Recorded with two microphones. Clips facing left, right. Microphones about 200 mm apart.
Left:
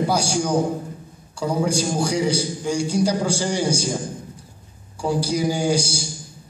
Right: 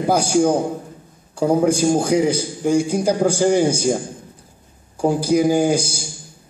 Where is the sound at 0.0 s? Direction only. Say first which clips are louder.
Right 6 dB; 55° right (ahead or behind).